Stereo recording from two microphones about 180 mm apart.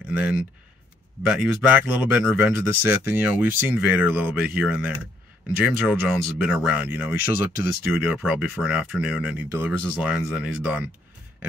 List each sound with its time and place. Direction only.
0.1 s speech: 5° right (ahead or behind)